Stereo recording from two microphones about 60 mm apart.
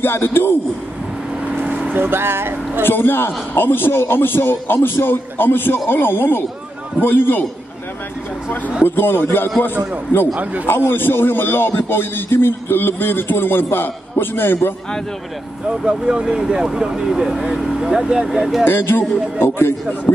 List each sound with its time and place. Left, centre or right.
0.0 s a man's voice: left
1.5 s vehicle: right
2.0 s speech: right
2.8 s a man's voice: left
8.8 s a man's voice: left
10.3 s a man's voice: right
10.7 s a man's voice: left
15.8 s speech: centre
18.7 s a man's voice: left